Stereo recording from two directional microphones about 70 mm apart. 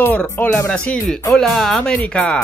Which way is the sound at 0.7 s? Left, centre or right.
Centre.